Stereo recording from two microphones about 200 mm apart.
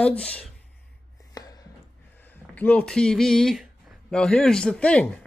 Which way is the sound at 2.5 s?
5° left (ahead or behind).